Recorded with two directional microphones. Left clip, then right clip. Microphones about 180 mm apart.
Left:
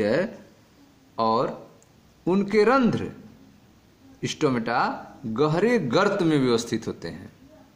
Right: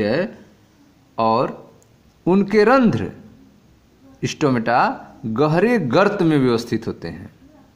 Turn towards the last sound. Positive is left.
turn(degrees=-25)  # may be behind; listen again after turning